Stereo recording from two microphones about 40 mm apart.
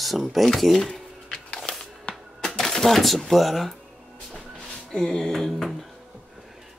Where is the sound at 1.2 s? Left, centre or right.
Left.